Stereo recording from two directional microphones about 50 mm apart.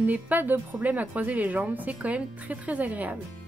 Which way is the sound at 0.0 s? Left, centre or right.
Right.